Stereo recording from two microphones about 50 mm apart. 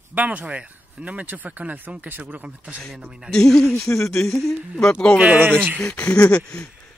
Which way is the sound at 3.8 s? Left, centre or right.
Left.